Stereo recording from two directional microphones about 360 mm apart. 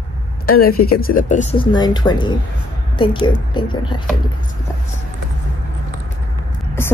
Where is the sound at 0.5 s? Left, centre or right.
Left.